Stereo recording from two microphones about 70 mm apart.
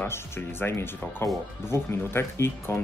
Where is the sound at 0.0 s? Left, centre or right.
Left.